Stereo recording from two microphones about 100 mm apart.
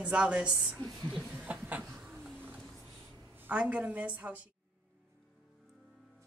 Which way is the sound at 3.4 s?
15° right (ahead or behind).